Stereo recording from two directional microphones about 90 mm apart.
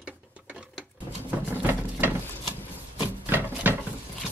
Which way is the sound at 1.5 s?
25° right (ahead or behind).